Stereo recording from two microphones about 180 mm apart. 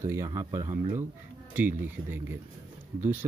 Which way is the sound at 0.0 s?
15° right (ahead or behind).